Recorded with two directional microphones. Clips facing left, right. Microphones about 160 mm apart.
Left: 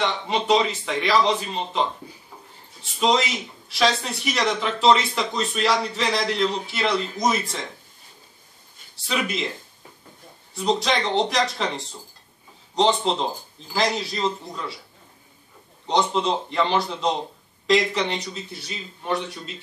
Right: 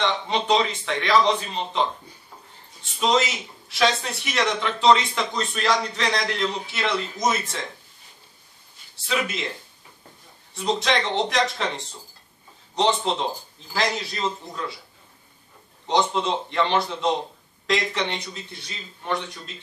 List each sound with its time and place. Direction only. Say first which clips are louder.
0.0 s speech: even; 5° left (ahead or behind)
3.6 s speech: even; centre (ahead or behind)
9.0 s speech: left 1 dB; centre (ahead or behind)
10.5 s speech: left 1 dB; centre (ahead or behind)
15.9 s speech: left 1 dB; centre (ahead or behind)